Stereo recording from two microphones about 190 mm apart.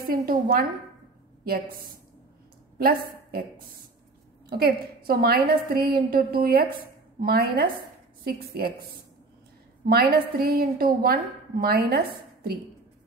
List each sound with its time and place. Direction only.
0.3 s a woman's voice: 50° right (ahead or behind)
2.8 s a woman's voice: 50° right (ahead or behind)
9.8 s a woman's voice: 50° right (ahead or behind)